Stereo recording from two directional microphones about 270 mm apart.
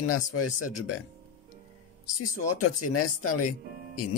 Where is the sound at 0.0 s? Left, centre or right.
Left.